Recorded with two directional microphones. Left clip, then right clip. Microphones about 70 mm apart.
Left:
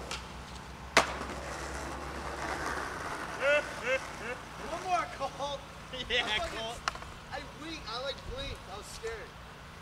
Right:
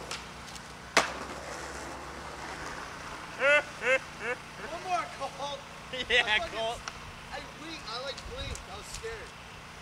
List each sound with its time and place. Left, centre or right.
0.9 s skateboard: centre
2.4 s vehicle: left
3.4 s a sound: right
4.8 s vehicle: centre
5.9 s a sound: right
7.3 s vehicle: centre